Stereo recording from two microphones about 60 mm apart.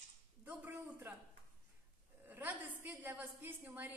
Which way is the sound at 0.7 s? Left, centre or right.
Right.